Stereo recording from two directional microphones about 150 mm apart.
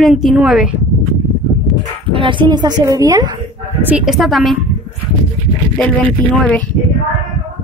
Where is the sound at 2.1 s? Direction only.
35° right (ahead or behind).